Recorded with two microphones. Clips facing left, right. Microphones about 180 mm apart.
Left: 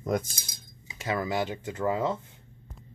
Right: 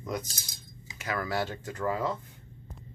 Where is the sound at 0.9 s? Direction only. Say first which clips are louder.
Left 3 dB; 25° left (ahead or behind).